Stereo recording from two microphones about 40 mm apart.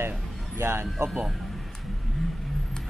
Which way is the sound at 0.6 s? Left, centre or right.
Right.